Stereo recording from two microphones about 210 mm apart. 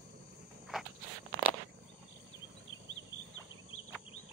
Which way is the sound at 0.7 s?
5° right (ahead or behind).